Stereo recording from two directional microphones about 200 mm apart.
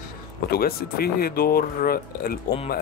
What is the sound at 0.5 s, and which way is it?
Speech, 50° left (ahead or behind).